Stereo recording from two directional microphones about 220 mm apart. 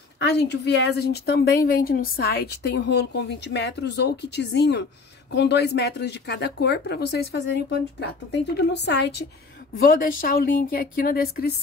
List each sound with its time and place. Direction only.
0.2 s a woman's voice: 50° left (ahead or behind)